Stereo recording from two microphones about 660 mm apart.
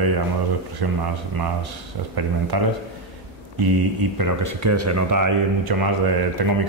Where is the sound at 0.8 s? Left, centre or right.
Right.